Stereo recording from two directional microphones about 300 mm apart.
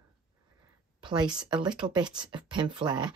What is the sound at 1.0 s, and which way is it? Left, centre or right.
Speech, centre.